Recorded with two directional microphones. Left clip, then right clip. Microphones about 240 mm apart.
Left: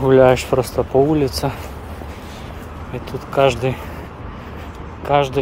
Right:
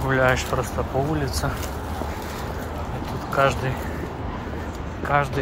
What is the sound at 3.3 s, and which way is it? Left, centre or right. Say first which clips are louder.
Speech: left 5 dB; left.